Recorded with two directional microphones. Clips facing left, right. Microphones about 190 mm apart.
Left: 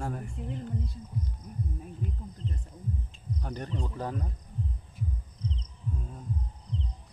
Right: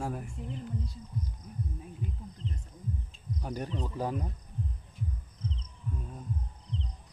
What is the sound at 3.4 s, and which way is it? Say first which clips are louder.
Speech: right 1 dB; 10° right (ahead or behind).